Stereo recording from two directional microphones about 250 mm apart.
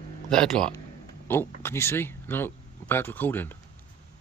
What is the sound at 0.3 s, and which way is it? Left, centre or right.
Speech, centre.